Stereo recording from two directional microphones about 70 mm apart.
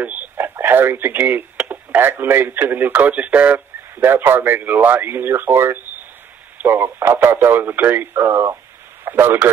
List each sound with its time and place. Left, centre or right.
0.0 s radio: right
0.6 s speech: right
4.0 s speech: right